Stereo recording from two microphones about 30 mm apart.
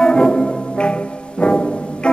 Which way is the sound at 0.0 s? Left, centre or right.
Left.